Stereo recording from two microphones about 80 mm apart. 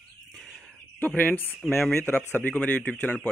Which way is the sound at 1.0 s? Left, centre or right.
Left.